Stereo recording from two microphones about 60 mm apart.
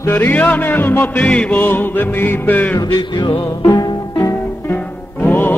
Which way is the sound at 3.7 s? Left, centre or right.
Left.